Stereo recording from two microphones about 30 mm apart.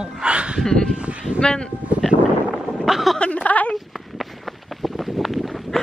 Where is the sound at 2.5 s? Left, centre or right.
Centre.